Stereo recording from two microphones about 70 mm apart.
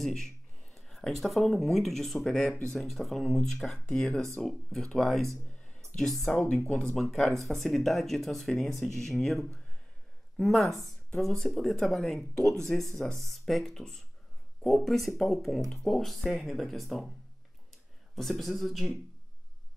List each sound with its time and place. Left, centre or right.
0.7 s speech: centre
2.1 s speech: centre
4.4 s speech: centre
6.4 s speech: left
6.7 s speech: centre
18.1 s speech: centre